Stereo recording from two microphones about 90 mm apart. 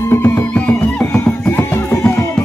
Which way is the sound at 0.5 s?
15° left (ahead or behind).